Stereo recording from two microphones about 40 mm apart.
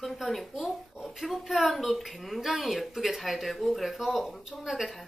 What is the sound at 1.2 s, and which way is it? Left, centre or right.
Speech, centre.